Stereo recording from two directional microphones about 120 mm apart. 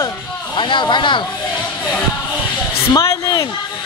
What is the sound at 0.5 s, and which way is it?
Speech, 40° left (ahead or behind).